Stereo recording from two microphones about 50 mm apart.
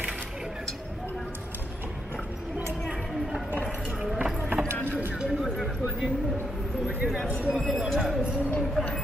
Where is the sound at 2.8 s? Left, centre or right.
Centre.